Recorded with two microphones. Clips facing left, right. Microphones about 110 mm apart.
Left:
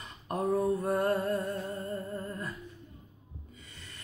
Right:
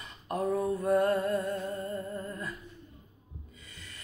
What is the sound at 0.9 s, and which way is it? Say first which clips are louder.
Music: right 2 dB; 30° left (ahead or behind).